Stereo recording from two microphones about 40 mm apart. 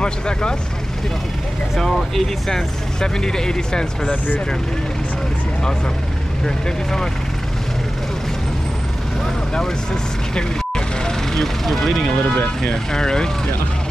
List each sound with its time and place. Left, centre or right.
0.0 s speech: left
2.1 s speech: centre
3.0 s speech: centre
6.4 s speech: centre
9.2 s vehicle: centre
10.3 s speech: centre